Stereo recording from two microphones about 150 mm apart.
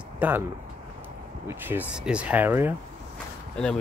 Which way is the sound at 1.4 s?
15° right (ahead or behind).